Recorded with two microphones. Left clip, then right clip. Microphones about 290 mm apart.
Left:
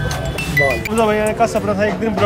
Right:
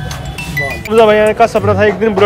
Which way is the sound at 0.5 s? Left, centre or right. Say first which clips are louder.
Right 4 dB; centre.